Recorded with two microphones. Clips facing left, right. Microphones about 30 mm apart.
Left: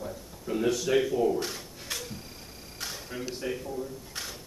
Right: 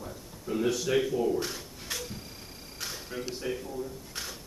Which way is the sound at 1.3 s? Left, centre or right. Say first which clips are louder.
Even; centre.